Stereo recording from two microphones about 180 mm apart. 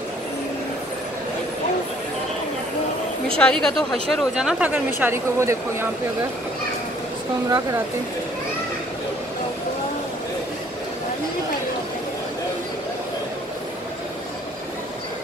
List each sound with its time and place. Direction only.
3.3 s speech: 5° left (ahead or behind); by 5.9 s 15° right (ahead or behind)